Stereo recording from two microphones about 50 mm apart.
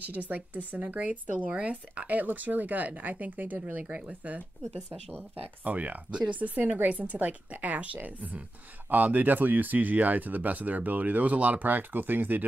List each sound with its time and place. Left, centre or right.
0.1 s speech: right
5.6 s speech: right